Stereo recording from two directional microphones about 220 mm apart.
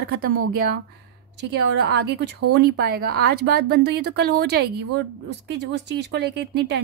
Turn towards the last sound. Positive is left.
turn(degrees=-50)  # may be behind; listen again after turning